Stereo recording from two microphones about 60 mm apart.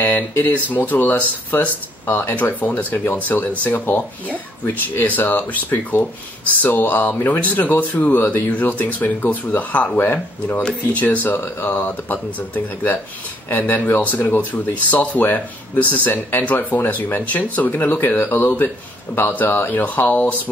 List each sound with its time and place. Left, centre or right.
0.7 s speech: left
17.6 s speech: left